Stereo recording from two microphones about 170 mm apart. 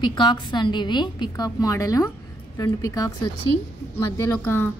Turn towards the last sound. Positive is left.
turn(degrees=15)  # may be behind; listen again after turning